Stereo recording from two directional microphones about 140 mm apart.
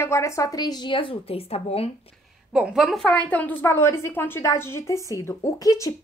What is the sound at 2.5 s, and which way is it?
A child's voice, 5° right (ahead or behind).